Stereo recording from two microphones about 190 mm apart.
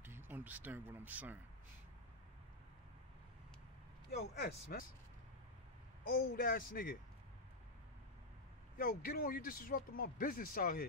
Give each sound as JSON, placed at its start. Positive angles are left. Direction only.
{"t": 0.0, "sound": "speech", "side_deg": -10}
{"t": 4.1, "sound": "a man's voice", "side_deg": 55}
{"t": 6.1, "sound": "a man's voice", "side_deg": 50}
{"t": 8.7, "sound": "a man's voice", "side_deg": 50}